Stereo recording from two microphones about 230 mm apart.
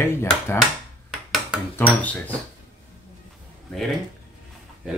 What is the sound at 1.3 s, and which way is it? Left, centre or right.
Speech, centre.